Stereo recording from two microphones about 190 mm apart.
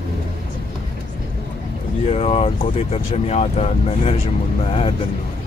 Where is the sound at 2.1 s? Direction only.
35° left (ahead or behind).